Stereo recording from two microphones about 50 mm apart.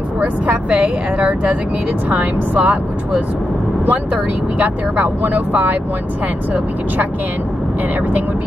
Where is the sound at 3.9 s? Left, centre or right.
Right.